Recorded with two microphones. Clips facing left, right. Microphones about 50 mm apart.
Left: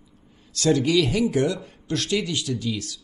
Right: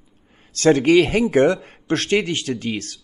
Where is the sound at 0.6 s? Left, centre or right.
Right.